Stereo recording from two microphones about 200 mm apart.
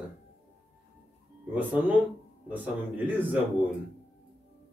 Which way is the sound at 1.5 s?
5° right (ahead or behind).